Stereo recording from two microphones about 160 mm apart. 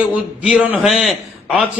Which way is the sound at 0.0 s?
5° right (ahead or behind).